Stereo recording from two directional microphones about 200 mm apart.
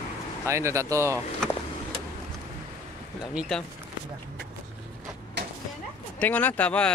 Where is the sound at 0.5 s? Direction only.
15° right (ahead or behind).